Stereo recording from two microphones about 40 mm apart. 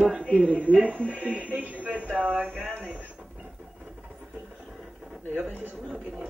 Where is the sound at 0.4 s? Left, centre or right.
Right.